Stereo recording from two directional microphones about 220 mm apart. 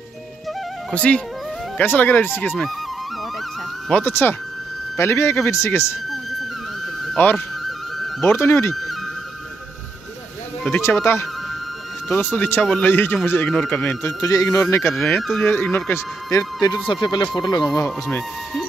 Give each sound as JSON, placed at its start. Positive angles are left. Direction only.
{"t": 0.9, "sound": "speech", "side_deg": 5}
{"t": 3.9, "sound": "speech", "side_deg": 10}
{"t": 7.2, "sound": "music", "side_deg": 10}
{"t": 8.3, "sound": "speech", "side_deg": 10}
{"t": 10.6, "sound": "speech", "side_deg": 10}
{"t": 17.7, "sound": "speech", "side_deg": 10}